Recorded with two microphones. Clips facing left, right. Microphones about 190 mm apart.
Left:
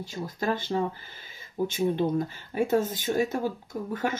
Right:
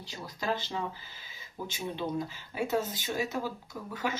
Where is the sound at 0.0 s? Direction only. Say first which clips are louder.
Left 6 dB; 50° left (ahead or behind).